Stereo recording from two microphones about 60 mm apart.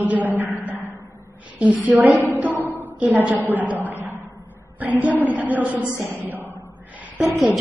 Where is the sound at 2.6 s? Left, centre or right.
Right.